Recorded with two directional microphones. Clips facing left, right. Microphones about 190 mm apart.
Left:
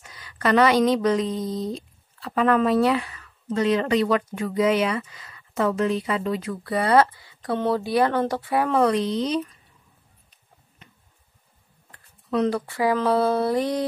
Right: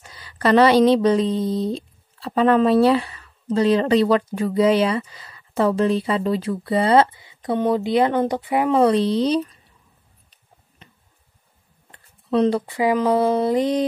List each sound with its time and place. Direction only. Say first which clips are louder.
0.0 s speech: right 4 dB; 30° right (ahead or behind)
11.9 s speech: right 4 dB; 25° right (ahead or behind)